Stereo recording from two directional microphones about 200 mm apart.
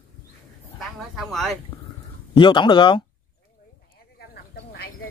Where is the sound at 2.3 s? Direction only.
25° left (ahead or behind).